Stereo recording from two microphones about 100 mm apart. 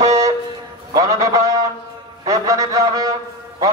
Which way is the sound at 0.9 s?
35° right (ahead or behind).